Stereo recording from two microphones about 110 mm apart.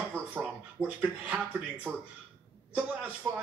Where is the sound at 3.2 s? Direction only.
20° right (ahead or behind).